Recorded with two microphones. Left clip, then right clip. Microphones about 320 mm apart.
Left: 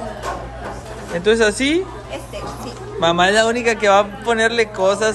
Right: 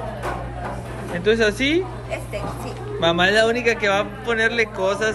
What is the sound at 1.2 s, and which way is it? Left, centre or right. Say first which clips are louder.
Speech: left 3 dB; centre.